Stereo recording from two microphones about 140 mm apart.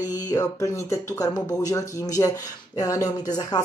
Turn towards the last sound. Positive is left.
turn(degrees=30)  # may be behind; listen again after turning